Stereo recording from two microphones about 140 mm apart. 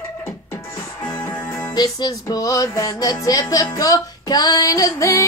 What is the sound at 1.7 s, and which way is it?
Music, 30° left (ahead or behind).